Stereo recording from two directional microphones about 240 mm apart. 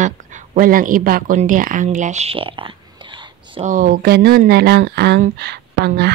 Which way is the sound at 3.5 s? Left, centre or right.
Right.